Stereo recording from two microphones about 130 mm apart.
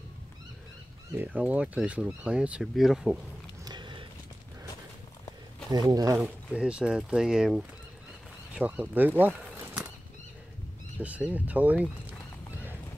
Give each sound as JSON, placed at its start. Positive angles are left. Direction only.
{"t": 1.1, "sound": "speech", "side_deg": -10}
{"t": 3.6, "sound": "a sound", "side_deg": -35}
{"t": 5.7, "sound": "speech", "side_deg": -30}
{"t": 6.1, "sound": "speech", "side_deg": -10}
{"t": 11.0, "sound": "speech", "side_deg": -10}